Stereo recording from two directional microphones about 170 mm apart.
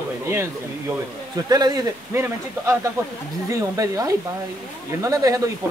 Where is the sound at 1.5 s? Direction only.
25° right (ahead or behind).